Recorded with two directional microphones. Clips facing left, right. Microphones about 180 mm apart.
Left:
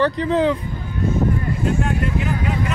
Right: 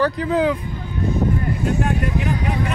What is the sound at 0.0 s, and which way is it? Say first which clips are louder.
Speech: left 1 dB; 5° right (ahead or behind).